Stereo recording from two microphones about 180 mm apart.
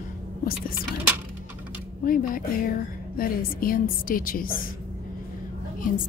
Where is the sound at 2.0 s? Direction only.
50° left (ahead or behind).